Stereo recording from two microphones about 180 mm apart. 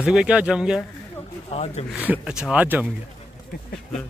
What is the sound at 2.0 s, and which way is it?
Speech, 5° right (ahead or behind).